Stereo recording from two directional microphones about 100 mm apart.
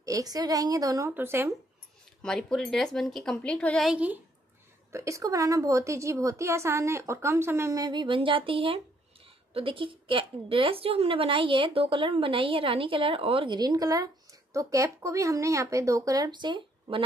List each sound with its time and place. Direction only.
0.0 s speech: 35° right (ahead or behind)
1.1 s a woman's voice: 20° right (ahead or behind)
2.2 s speech: 5° left (ahead or behind)
3.8 s a woman's voice: 10° right (ahead or behind)
4.9 s a woman's voice: 30° right (ahead or behind)
7.9 s speech: 55° right (ahead or behind)
13.6 s speech: 40° right (ahead or behind)